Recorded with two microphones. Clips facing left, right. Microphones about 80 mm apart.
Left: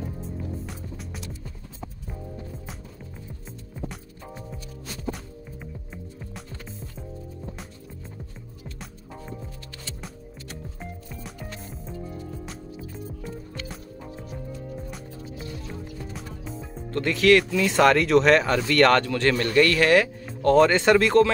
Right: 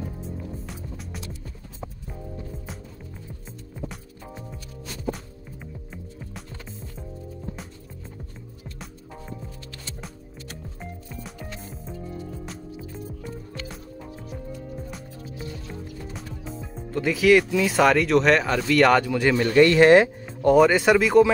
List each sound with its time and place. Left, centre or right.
0.7 s music: centre
3.4 s music: centre
10.8 s music: centre
16.1 s speech: centre; by 20.2 s right
20.4 s speech: centre